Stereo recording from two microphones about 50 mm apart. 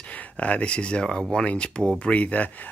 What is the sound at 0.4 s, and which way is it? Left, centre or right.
Speech, left.